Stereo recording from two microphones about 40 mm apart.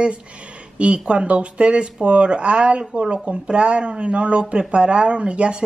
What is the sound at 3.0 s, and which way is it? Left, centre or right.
Speech, centre.